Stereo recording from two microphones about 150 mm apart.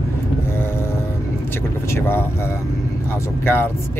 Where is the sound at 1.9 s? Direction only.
15° left (ahead or behind).